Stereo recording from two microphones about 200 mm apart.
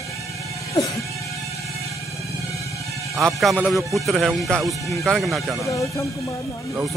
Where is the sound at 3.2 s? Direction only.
Centre (ahead or behind).